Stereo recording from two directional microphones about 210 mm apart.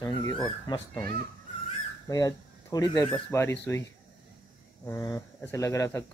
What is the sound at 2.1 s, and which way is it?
Speech, 15° left (ahead or behind).